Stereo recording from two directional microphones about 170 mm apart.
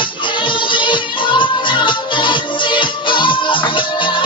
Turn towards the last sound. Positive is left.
turn(degrees=30)  # may be behind; listen again after turning